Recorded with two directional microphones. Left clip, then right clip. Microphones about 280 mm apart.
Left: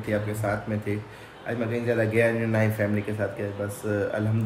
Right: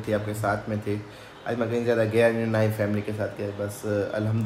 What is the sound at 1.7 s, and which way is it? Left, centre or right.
Speech, centre.